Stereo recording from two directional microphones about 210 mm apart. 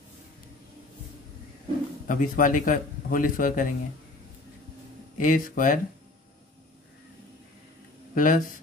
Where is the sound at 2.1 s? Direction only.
40° left (ahead or behind).